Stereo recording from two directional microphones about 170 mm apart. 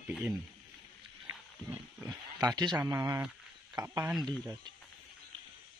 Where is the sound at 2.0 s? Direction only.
20° right (ahead or behind).